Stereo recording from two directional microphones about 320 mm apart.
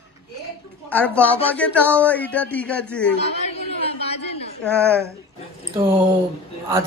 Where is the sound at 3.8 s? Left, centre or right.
Centre.